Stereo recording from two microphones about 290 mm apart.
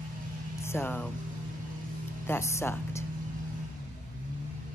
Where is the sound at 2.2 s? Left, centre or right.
Centre.